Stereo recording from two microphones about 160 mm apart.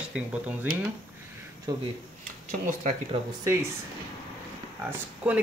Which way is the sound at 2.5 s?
50° right (ahead or behind).